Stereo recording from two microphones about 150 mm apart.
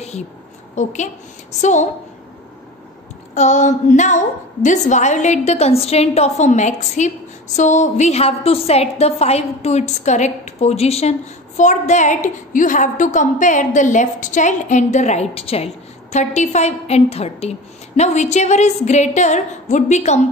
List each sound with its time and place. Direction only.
0.7 s a woman's voice: 55° left (ahead or behind)
3.3 s a woman's voice: 55° left (ahead or behind)